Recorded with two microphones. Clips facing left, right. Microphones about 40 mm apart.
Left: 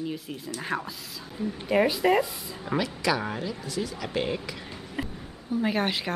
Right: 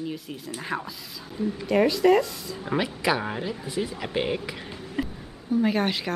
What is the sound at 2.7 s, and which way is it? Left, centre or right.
Speech, right.